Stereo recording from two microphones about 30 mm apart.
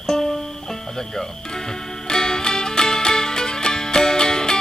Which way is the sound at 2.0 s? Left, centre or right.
Left.